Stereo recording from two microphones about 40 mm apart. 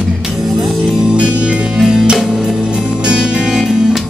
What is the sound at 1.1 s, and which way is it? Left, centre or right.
Music, right.